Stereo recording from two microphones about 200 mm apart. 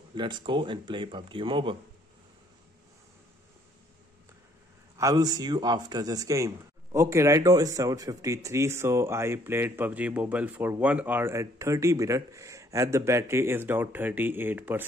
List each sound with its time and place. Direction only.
0.1 s a man's voice: 25° right (ahead or behind)
4.9 s speech: 20° right (ahead or behind)